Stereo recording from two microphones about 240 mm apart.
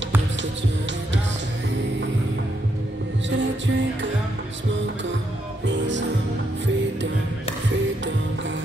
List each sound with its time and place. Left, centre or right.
3.3 s music: right
5.7 s music: right